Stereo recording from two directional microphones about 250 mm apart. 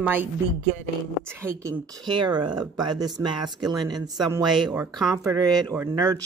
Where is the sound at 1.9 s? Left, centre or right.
Centre.